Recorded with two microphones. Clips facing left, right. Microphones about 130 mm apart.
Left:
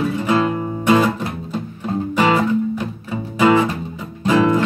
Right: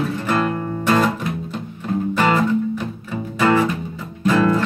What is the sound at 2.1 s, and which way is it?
Music, 10° left (ahead or behind).